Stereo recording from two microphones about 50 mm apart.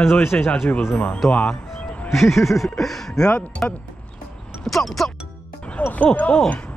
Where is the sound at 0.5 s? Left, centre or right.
Left.